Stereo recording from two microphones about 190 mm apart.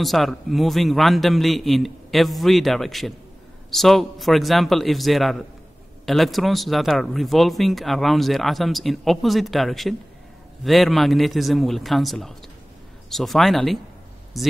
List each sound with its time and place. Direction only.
0.0 s speech: centre (ahead or behind)